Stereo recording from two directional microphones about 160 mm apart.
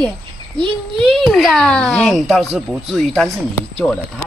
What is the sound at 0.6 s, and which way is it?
Speech, 30° right (ahead or behind).